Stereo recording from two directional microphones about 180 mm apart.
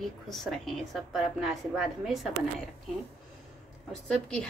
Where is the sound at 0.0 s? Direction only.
Centre (ahead or behind).